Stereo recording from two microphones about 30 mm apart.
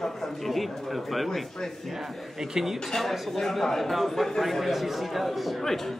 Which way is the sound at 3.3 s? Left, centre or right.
Centre.